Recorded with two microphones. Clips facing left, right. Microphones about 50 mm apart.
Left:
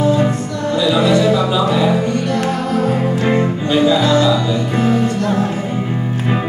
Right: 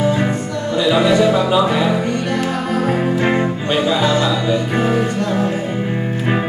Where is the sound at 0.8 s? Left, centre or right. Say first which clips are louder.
Even; right.